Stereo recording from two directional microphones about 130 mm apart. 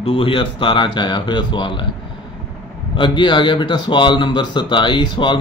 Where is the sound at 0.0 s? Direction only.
45° left (ahead or behind).